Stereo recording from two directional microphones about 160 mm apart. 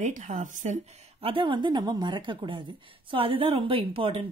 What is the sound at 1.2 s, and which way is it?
A woman's voice, 35° right (ahead or behind).